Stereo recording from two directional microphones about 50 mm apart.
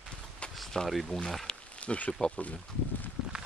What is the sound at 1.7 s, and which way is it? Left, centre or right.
Speech, left.